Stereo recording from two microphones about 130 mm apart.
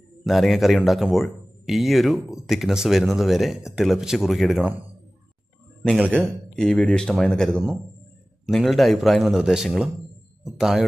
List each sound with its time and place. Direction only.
0.2 s speech: centre (ahead or behind)
5.8 s a man's voice: 10° right (ahead or behind)
6.5 s speech: 5° left (ahead or behind)